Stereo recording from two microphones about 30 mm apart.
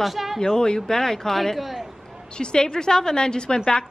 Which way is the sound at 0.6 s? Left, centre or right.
Left.